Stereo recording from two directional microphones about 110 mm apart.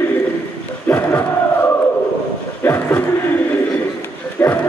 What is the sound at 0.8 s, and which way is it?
Crowd, 15° left (ahead or behind).